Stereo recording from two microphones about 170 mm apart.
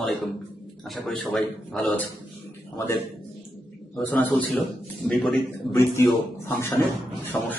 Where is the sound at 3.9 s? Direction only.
10° left (ahead or behind).